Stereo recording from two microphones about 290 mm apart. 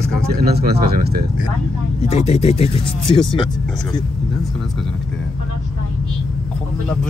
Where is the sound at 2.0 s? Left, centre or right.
Left.